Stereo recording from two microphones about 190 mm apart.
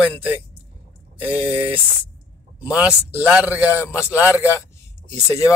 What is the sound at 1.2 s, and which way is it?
Speech, 10° right (ahead or behind).